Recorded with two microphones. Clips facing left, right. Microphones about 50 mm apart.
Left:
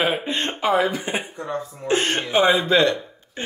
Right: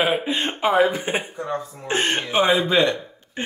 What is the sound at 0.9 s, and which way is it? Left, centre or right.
Speech, right.